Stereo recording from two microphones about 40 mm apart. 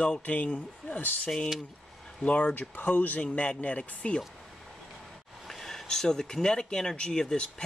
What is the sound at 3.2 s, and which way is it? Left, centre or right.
Speech, left.